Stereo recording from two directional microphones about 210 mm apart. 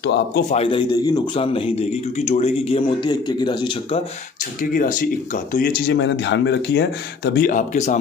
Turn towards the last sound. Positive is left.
turn(degrees=35)  # may be behind; listen again after turning